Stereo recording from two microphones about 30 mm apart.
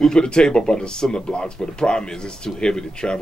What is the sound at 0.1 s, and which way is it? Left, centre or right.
Speech, left.